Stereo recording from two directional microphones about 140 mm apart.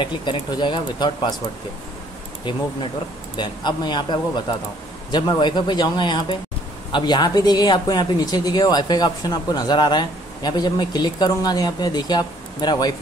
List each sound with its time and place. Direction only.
0.0 s speech: 35° left (ahead or behind)
3.3 s speech: 35° left (ahead or behind)